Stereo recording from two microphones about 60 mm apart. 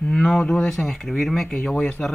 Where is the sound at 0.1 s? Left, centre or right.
Centre.